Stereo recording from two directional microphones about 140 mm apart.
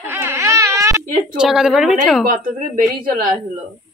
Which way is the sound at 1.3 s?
5° right (ahead or behind).